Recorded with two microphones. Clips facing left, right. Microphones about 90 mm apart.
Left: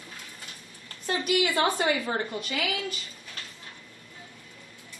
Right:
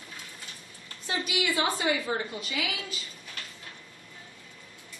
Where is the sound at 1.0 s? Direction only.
55° left (ahead or behind).